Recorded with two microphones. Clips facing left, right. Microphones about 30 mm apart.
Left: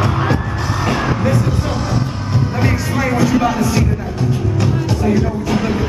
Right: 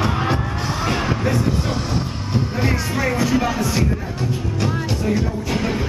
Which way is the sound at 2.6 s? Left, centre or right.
Centre.